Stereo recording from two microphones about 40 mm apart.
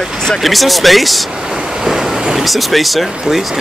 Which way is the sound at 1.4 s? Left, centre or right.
Centre.